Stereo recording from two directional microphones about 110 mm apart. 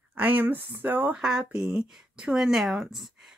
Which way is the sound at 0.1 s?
15° right (ahead or behind).